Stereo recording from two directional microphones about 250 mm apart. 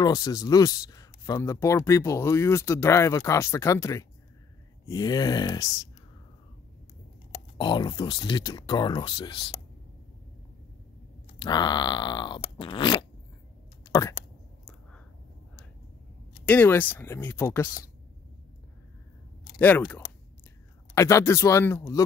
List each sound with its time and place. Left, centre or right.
0.0 s speech: centre
7.5 s speech: centre
11.3 s speech: centre
16.4 s speech: centre
19.6 s speech: centre